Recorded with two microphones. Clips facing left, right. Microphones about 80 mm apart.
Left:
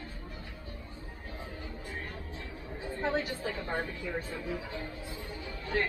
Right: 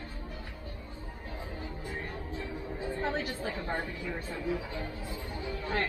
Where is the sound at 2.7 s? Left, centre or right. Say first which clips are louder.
Right 2 dB; right.